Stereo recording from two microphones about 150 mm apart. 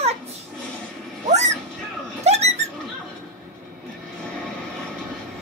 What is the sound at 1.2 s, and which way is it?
Cat, 50° right (ahead or behind).